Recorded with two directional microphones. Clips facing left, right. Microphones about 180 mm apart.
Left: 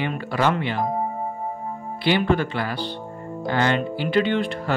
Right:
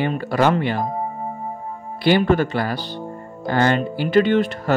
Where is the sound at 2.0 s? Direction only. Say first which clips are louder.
Right 4 dB; 45° right (ahead or behind).